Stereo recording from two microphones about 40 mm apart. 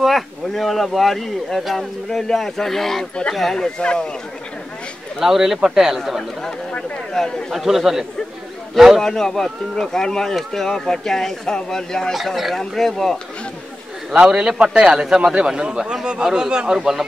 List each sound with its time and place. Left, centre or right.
0.0 s speech: centre
3.5 s speech: left
5.2 s a man's voice: centre
5.9 s speech: centre
7.1 s a man's voice: centre
7.5 s a man's voice: centre
9.0 s speech: centre
12.1 s speech: centre
14.2 s a man's voice: centre
15.8 s a man's voice: centre